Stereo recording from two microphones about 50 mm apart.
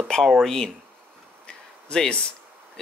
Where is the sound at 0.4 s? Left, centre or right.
Centre.